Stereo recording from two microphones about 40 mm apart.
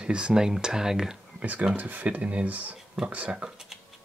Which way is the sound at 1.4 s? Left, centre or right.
Right.